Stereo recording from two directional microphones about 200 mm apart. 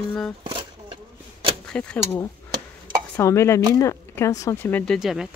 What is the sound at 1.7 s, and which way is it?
Speech, 5° left (ahead or behind).